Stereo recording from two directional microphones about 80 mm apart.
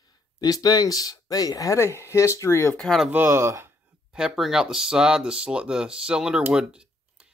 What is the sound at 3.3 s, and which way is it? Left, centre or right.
Speech, right.